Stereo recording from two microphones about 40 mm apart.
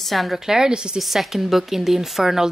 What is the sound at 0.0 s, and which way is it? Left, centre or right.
Speech, centre.